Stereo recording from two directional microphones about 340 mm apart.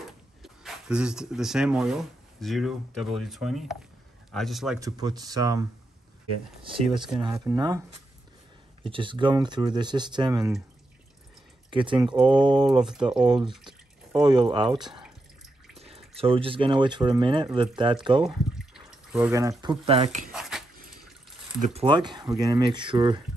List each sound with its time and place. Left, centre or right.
0.4 s speech: centre
6.9 s speech: centre
7.2 s speech: centre
8.8 s speech: centre
11.7 s speech: centre
15.8 s a sound: centre
16.2 s speech: centre
18.6 s drip: centre; by 20.3 s right
20.3 s dog: centre
21.5 s speech: centre